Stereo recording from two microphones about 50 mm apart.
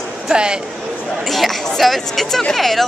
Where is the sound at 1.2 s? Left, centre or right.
Centre.